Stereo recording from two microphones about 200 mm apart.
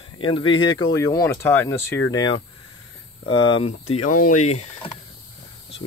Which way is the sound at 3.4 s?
30° left (ahead or behind).